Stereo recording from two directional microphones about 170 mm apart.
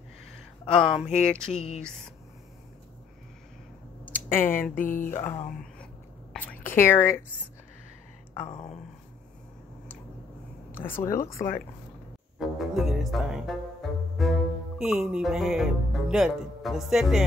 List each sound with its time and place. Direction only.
0.7 s speech: centre (ahead or behind)
4.0 s a sound: 10° left (ahead or behind)
4.7 s speech: 50° left (ahead or behind)
5.1 s speech: 15° left (ahead or behind)
6.3 s whispering: 10° left (ahead or behind)
10.8 s speech: 15° left (ahead or behind)
12.4 s speech: centre (ahead or behind)
14.2 s cello: centre (ahead or behind)
14.8 s speech: 5° right (ahead or behind)